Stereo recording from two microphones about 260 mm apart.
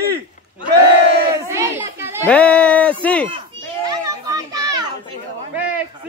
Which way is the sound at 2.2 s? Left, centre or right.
Centre.